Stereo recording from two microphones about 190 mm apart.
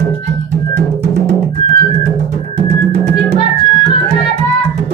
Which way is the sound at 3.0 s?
40° right (ahead or behind).